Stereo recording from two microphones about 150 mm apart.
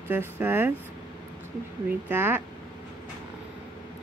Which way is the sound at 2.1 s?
15° right (ahead or behind).